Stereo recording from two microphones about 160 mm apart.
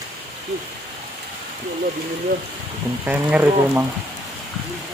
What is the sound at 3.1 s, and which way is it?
Speech, 10° right (ahead or behind).